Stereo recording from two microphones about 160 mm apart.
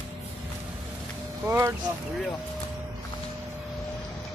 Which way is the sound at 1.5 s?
15° right (ahead or behind).